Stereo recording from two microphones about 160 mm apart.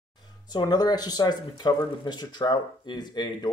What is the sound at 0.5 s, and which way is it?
Speech, 25° left (ahead or behind).